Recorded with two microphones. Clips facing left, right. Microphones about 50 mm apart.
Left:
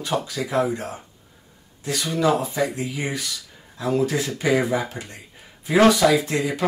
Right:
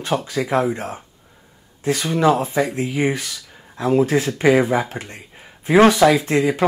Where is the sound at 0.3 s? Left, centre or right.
Right.